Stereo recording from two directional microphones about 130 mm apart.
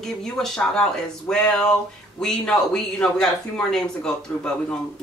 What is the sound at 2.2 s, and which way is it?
Speech, 5° left (ahead or behind).